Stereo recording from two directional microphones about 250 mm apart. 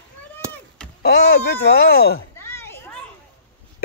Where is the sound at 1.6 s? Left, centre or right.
Left.